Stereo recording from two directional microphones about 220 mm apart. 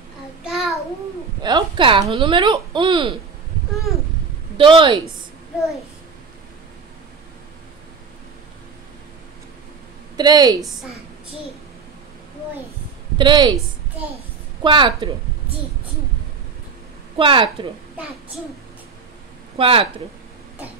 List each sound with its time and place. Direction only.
0.4 s child singing: centre (ahead or behind)
1.4 s a woman's voice: 20° right (ahead or behind)
4.6 s a woman's voice: 20° right (ahead or behind)
10.1 s a woman's voice: 20° right (ahead or behind)
10.6 s a woman's voice: centre (ahead or behind)
13.2 s a woman's voice: 20° right (ahead or behind)
14.6 s a woman's voice: 20° right (ahead or behind)
17.2 s a woman's voice: 25° right (ahead or behind)
19.6 s a woman's voice: 25° right (ahead or behind)